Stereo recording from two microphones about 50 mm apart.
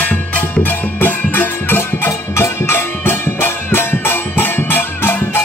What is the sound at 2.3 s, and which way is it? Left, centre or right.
Music, left.